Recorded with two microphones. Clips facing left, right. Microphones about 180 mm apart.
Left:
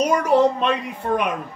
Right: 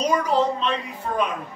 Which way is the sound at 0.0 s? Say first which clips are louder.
Left 4 dB; 70° left (ahead or behind).